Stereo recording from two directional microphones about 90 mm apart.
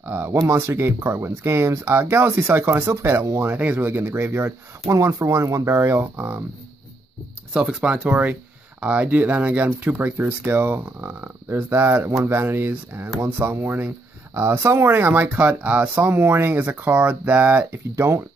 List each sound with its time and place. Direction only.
0.0 s speech: 25° right (ahead or behind)
3.4 s speech: 20° right (ahead or behind)
7.5 s speech: 5° right (ahead or behind)
17.9 s speech: 35° right (ahead or behind)